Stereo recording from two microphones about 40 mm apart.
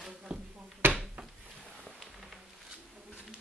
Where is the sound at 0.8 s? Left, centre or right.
Right.